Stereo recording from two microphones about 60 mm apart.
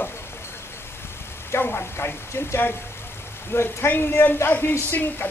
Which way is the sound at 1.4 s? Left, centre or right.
Left.